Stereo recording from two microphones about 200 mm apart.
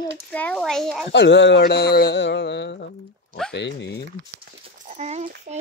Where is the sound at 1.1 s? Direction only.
60° left (ahead or behind).